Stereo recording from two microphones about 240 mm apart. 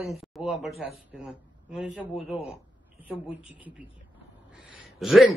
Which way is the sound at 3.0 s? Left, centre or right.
Centre.